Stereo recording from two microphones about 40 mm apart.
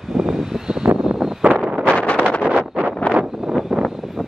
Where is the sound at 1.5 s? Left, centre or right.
Right.